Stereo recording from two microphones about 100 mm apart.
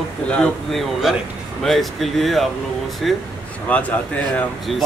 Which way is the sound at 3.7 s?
15° left (ahead or behind).